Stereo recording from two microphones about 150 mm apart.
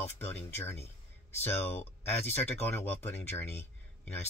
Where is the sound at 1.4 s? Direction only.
15° left (ahead or behind).